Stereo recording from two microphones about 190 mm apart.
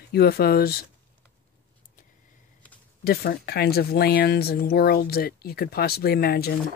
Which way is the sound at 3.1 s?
55° left (ahead or behind).